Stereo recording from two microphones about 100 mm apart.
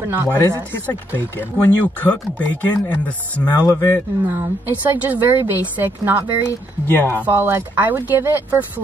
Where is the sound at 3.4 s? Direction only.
40° left (ahead or behind).